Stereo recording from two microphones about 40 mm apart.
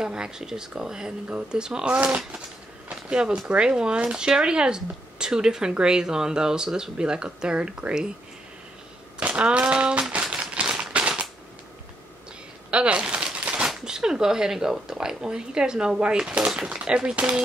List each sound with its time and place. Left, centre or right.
0.0 s speech: centre
2.0 s speech: right
2.9 s speech: right
9.2 s a sound: right
10.3 s typewriter: right
12.7 s a sound: right
13.8 s speech: centre